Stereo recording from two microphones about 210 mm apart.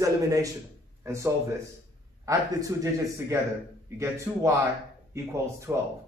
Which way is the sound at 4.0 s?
15° right (ahead or behind).